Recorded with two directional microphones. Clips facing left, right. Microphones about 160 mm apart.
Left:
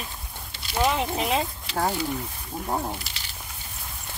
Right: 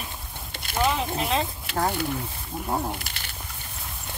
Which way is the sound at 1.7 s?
55° right (ahead or behind).